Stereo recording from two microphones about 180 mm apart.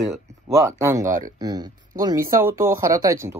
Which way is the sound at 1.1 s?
50° right (ahead or behind).